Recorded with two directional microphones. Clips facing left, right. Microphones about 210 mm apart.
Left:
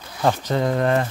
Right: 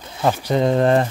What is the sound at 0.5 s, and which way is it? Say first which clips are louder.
Speech: right 7 dB; 25° right (ahead or behind).